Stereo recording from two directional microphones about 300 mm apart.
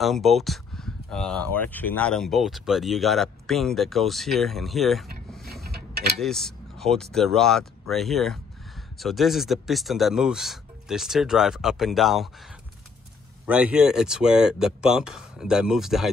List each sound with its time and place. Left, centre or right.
0.0 s speech: centre
5.7 s mechanisms: right
6.1 s speech: centre
13.5 s speech: centre